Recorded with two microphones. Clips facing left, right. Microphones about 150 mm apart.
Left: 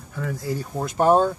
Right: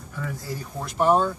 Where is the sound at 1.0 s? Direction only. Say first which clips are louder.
Left 3 dB; 40° left (ahead or behind).